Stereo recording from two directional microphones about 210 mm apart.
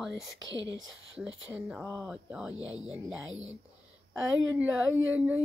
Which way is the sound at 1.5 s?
5° right (ahead or behind).